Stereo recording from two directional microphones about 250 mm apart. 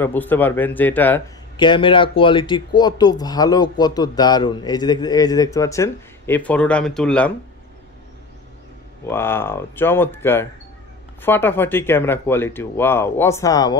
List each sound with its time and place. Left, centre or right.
0.0 s speech: centre
1.6 s speech: centre
9.0 s speech: centre